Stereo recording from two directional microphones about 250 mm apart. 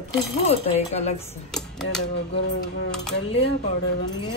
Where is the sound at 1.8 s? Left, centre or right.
Left.